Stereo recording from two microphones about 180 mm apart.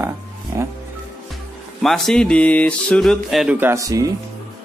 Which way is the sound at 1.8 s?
Centre (ahead or behind).